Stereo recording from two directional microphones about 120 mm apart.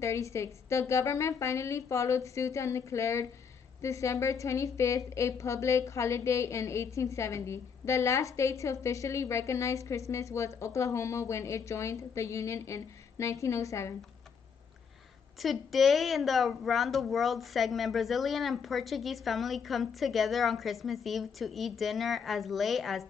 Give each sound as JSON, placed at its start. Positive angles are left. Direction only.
{"t": 0.0, "sound": "a woman's voice", "side_deg": 25}
{"t": 15.4, "sound": "a woman's voice", "side_deg": 0}